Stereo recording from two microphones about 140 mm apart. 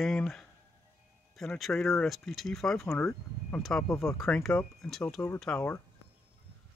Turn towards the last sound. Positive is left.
turn(degrees=20)  # may be behind; listen again after turning